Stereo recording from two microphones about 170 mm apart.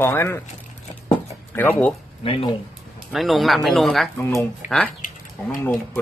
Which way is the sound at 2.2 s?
35° left (ahead or behind).